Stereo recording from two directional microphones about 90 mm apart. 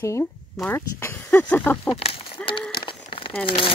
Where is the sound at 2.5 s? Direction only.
65° left (ahead or behind).